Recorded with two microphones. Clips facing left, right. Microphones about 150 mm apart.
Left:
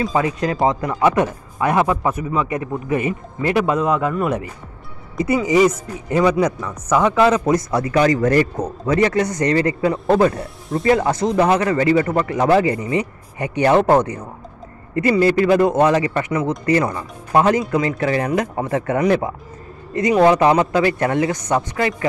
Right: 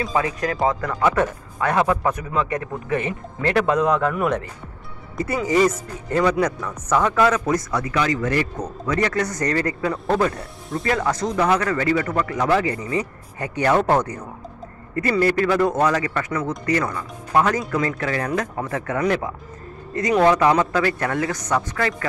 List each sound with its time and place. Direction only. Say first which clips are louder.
0.0 s speech: left 3 dB; 30° left (ahead or behind); by 4.1 s 5° left (ahead or behind)
5.1 s speech: left 4 dB; 10° left (ahead or behind)
7.2 s a man's voice: left 4 dB; 20° left (ahead or behind); by 8.6 s 40° left (ahead or behind)
8.8 s speech: left 5 dB; 25° left (ahead or behind)